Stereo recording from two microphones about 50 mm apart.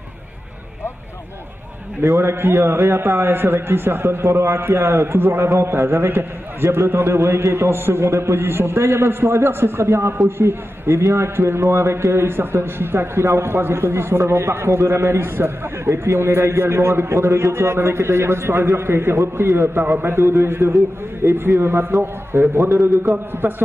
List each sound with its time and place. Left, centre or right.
2.0 s a man's voice: right
8.4 s a man's voice: right
19.8 s a man's voice: right
20.1 s a man's voice: right